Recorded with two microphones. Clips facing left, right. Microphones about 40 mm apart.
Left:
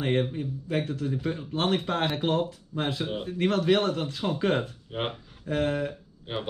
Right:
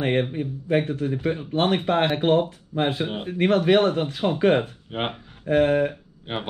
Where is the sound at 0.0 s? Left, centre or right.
Right.